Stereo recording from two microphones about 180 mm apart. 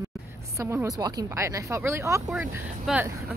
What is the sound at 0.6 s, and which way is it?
Speech, 15° right (ahead or behind).